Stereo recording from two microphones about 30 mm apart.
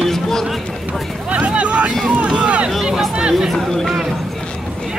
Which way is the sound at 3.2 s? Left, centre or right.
Right.